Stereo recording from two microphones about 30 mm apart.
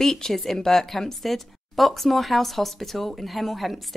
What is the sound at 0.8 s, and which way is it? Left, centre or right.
Speech, centre.